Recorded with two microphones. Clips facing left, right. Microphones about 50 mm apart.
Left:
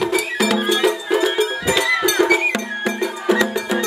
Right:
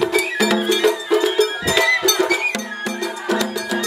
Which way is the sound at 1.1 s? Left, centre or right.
Centre.